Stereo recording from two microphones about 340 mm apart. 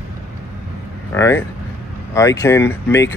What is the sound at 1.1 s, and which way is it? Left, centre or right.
Speech, centre.